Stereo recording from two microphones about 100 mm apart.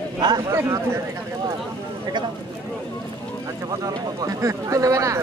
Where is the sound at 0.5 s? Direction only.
25° right (ahead or behind).